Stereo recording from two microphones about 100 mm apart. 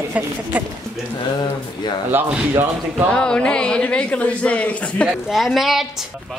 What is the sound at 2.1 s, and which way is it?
Speech, 20° right (ahead or behind).